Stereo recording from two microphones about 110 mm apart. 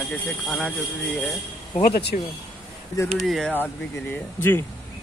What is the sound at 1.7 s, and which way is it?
Speech, 90° left.